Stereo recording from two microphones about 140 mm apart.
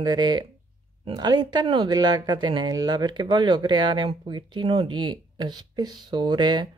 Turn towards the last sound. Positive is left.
turn(degrees=-30)  # may be behind; listen again after turning